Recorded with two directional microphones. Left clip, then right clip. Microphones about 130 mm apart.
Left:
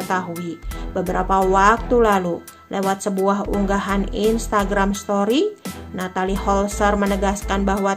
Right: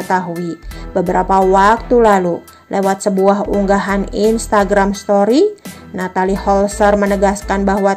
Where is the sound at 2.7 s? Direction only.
35° right (ahead or behind).